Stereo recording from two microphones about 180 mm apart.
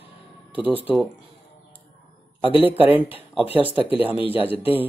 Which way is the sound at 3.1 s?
10° right (ahead or behind).